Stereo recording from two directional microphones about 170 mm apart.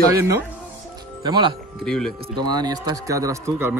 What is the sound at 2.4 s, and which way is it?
Speech, 25° right (ahead or behind).